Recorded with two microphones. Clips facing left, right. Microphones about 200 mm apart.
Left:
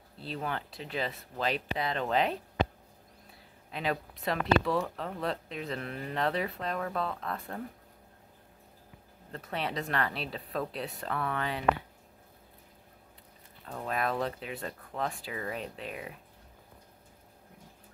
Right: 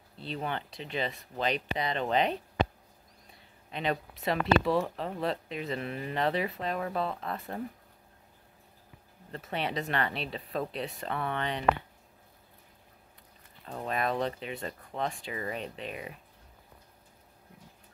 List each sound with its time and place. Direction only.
0.2 s speech: centre (ahead or behind)
3.7 s speech: centre (ahead or behind)
9.3 s speech: centre (ahead or behind)
13.8 s speech: centre (ahead or behind)